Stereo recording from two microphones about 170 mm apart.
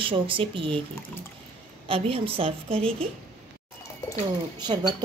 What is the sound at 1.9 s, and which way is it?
Speech, 35° right (ahead or behind).